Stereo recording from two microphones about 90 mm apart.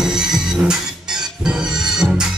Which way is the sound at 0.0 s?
5° right (ahead or behind).